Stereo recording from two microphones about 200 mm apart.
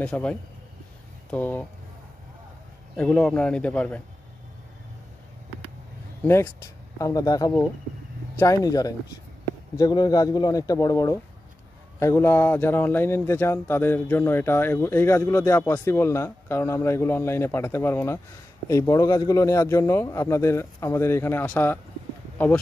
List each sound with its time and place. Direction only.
0.0 s a man's voice: 5° left (ahead or behind)
3.0 s a man's voice: 5° left (ahead or behind)
6.2 s speech: 10° left (ahead or behind)